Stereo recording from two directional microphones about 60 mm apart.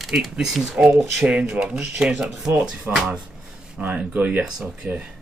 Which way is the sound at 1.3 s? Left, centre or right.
Right.